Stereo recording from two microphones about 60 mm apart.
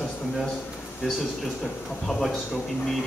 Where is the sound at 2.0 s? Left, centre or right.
Centre.